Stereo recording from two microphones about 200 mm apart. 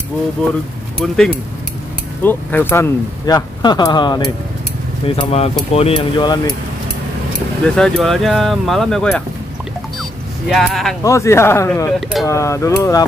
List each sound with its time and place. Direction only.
0.9 s speech: 5° left (ahead or behind); by 6.4 s 20° left (ahead or behind)
7.6 s speech: 5° left (ahead or behind)
10.5 s speech: centre (ahead or behind)
11.1 s speech: 15° left (ahead or behind)